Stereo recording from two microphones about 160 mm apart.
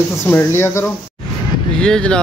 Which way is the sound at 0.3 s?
15° left (ahead or behind).